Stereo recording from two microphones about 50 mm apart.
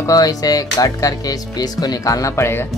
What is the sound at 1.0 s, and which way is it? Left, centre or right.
Speech, left.